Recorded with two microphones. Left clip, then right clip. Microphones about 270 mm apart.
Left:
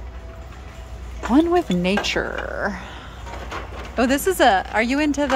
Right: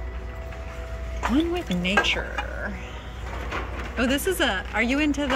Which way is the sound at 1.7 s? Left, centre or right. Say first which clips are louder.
Left 1 dB; left.